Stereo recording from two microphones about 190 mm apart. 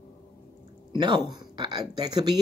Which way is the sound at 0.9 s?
25° right (ahead or behind).